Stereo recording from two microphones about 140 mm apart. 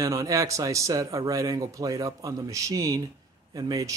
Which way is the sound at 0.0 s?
25° right (ahead or behind).